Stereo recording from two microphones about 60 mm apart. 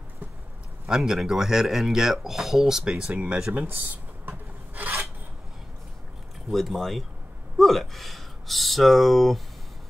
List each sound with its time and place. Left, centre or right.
0.8 s speech: centre
4.3 s rub: right
6.5 s speech: centre